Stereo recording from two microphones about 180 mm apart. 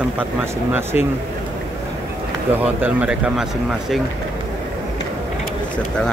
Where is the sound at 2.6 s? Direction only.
10° right (ahead or behind).